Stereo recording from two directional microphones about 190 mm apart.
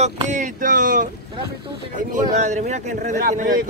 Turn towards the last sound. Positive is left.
turn(degrees=-45)  # may be behind; listen again after turning